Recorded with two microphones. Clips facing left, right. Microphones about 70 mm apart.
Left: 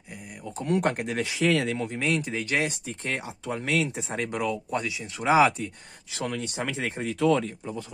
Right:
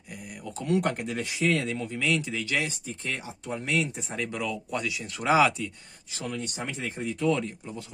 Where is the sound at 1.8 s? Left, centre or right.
Left.